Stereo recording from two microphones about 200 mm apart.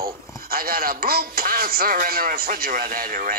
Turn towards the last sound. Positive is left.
turn(degrees=-45)  # may be behind; listen again after turning